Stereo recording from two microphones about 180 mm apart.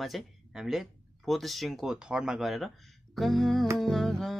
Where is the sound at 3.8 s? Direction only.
Centre (ahead or behind).